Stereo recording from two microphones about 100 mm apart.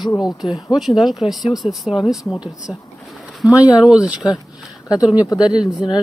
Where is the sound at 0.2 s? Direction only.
Centre (ahead or behind).